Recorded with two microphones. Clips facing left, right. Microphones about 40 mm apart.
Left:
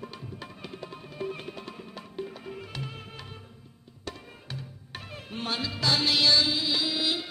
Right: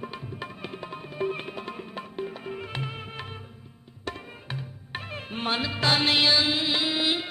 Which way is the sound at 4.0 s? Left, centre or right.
Right.